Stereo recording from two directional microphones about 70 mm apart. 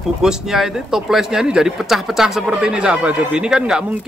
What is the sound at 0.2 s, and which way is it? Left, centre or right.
Speech, centre.